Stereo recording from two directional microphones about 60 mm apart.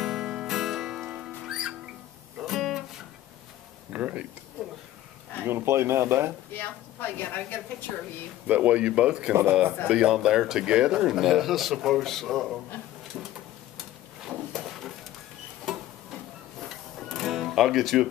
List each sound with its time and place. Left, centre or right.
0.0 s music: centre
3.9 s a sound: right
5.4 s speech: right
6.5 s a woman's voice: left
8.5 s speech: right
9.3 s speech: right
9.8 s speech: centre
14.3 s a sound: centre
16.6 s music: centre